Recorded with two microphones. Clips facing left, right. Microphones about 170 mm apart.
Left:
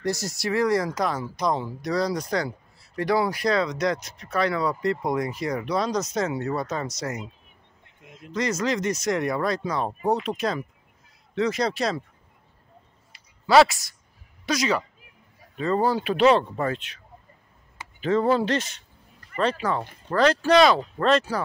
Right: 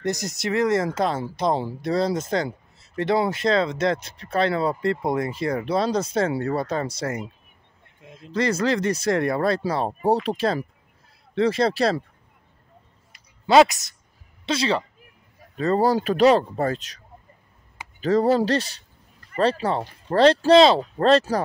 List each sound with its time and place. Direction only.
0.0 s speech: 20° right (ahead or behind)
13.5 s speech: 20° right (ahead or behind); by 17.0 s 40° right (ahead or behind)
18.0 s speech: 40° right (ahead or behind)